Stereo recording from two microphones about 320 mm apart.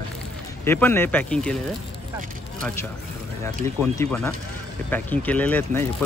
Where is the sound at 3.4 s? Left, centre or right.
Centre.